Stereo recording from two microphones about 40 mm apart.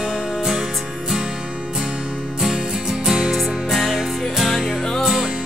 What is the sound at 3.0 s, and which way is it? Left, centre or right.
Music, centre.